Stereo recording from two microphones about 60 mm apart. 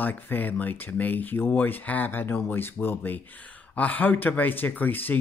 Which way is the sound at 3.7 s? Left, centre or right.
Left.